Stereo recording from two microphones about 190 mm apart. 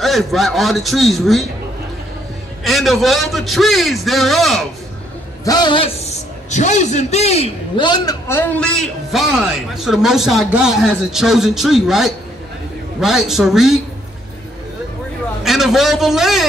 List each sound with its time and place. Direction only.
0.0 s a man's voice: centre (ahead or behind)
2.6 s a man's voice: centre (ahead or behind)
5.4 s a man's voice: 20° left (ahead or behind); by 13.7 s centre (ahead or behind)
15.4 s a man's voice: centre (ahead or behind)